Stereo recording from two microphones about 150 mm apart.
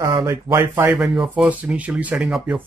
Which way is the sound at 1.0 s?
5° right (ahead or behind).